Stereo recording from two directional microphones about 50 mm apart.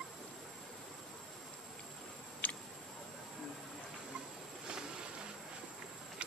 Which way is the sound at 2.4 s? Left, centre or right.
Left.